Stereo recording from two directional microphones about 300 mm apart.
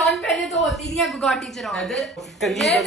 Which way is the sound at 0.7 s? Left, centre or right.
Centre.